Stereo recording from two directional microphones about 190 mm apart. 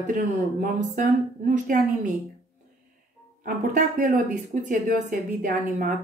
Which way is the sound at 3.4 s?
45° right (ahead or behind).